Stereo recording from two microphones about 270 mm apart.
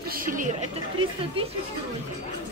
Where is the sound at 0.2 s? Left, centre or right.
Right.